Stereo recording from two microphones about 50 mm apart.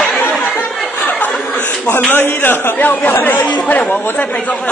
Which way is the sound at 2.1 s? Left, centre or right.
Left.